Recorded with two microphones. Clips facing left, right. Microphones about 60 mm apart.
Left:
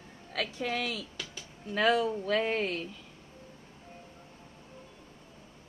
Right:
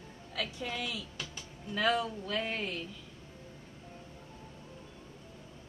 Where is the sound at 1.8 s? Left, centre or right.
Left.